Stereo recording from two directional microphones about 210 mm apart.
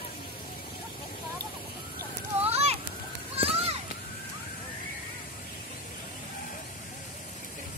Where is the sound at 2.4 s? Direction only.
30° right (ahead or behind).